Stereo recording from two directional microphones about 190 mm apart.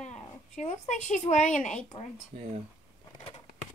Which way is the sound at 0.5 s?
40° left (ahead or behind).